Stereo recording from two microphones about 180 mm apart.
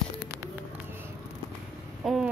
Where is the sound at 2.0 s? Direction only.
Centre (ahead or behind).